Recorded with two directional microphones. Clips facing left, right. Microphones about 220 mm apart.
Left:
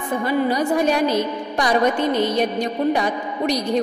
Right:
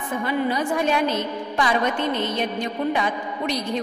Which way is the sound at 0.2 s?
40° left (ahead or behind).